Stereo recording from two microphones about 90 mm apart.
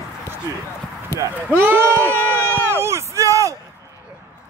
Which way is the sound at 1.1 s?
25° left (ahead or behind).